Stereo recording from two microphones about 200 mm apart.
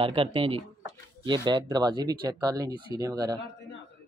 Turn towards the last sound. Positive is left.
turn(degrees=-20)  # may be behind; listen again after turning